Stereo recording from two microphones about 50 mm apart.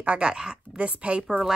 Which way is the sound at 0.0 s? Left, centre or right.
Right.